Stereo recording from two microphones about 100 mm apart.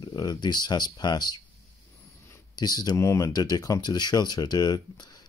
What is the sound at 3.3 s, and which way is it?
Speech, 40° left (ahead or behind).